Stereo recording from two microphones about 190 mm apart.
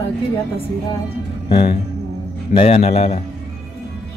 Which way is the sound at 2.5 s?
30° left (ahead or behind).